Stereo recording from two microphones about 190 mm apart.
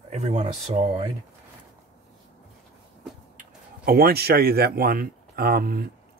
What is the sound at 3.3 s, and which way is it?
Speech, 50° right (ahead or behind).